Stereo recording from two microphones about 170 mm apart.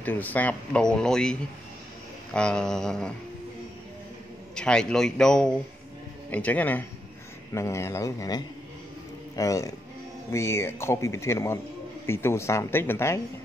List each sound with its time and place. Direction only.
0.0 s speech: 10° left (ahead or behind)
4.6 s speech: 5° left (ahead or behind)